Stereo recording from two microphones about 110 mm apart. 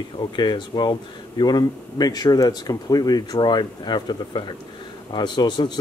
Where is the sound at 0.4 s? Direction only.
45° left (ahead or behind).